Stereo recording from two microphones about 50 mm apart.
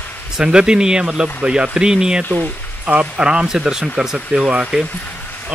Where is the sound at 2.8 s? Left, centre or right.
Right.